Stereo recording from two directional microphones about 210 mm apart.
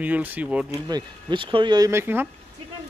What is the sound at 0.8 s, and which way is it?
Speech, 20° right (ahead or behind).